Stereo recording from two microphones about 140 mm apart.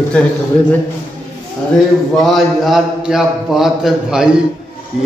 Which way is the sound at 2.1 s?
Centre (ahead or behind).